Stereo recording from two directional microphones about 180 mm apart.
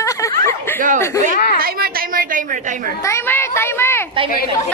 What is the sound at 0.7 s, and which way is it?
Speech, 50° right (ahead or behind).